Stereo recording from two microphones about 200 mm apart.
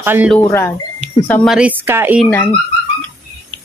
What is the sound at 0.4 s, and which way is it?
Speech, 15° left (ahead or behind).